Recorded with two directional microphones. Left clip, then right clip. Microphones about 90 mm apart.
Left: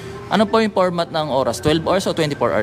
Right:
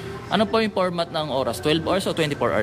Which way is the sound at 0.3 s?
40° left (ahead or behind).